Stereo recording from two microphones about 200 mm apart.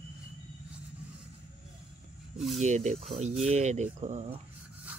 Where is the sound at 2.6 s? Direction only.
35° right (ahead or behind).